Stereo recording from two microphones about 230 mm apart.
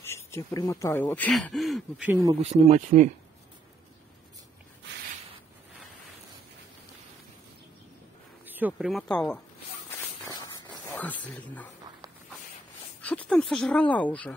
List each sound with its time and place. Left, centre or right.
0.0 s speech: centre
2.4 s speech: right
8.5 s speech: centre
10.2 s a sound: centre
13.0 s speech: centre